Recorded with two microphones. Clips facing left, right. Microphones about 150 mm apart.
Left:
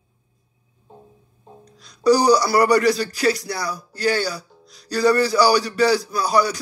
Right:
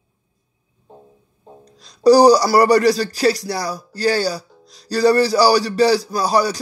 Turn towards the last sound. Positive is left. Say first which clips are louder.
# right 2 dB
turn(degrees=-30)  # may be behind; listen again after turning